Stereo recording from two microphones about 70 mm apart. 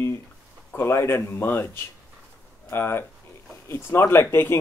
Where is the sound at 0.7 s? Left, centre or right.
Left.